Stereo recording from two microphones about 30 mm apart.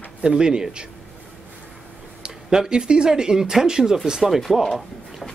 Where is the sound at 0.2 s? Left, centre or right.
Right.